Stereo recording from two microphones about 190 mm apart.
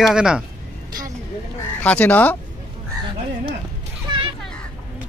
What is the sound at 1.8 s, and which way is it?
Speech, 10° left (ahead or behind).